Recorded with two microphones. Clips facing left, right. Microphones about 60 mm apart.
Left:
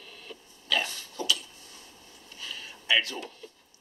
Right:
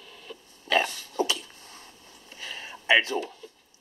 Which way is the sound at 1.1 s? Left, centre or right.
Right.